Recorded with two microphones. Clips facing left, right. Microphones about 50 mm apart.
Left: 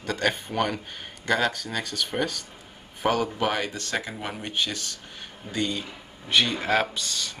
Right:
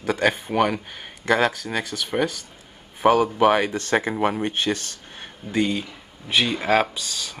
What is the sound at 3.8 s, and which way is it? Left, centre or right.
Speech, right.